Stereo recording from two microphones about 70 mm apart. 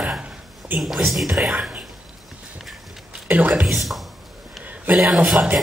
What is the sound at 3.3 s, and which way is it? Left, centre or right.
Speech, right.